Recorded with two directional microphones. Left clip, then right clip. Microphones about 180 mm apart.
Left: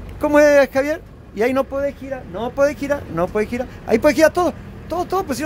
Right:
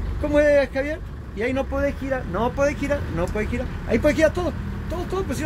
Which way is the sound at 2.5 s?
25° left (ahead or behind).